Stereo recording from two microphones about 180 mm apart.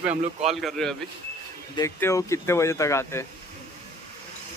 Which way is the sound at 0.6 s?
5° left (ahead or behind).